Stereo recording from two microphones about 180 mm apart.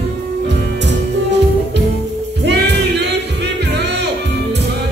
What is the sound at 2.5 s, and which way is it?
Music, 65° right (ahead or behind).